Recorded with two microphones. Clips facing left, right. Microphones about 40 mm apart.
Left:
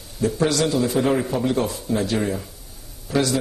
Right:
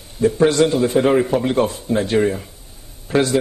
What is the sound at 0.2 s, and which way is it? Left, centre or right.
A man's voice, right.